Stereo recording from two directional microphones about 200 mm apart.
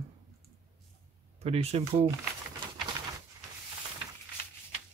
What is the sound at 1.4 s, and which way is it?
Speech, 30° right (ahead or behind).